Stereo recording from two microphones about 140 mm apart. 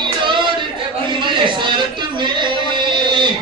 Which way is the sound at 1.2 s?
35° right (ahead or behind).